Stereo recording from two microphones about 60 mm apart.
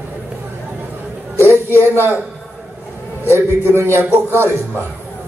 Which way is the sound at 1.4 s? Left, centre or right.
Left.